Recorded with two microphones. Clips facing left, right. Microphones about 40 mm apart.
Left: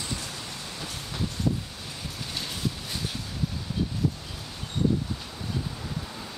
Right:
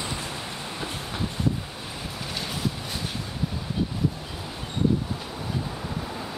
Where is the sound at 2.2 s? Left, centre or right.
Centre.